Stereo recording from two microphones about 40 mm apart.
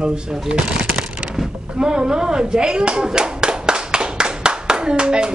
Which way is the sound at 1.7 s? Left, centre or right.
Right.